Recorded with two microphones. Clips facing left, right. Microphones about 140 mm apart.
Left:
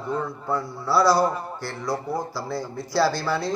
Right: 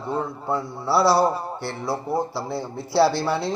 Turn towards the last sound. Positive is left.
turn(degrees=-25)  # may be behind; listen again after turning